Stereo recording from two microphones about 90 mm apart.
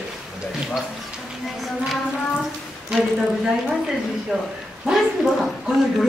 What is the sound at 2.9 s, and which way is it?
Speech, centre (ahead or behind).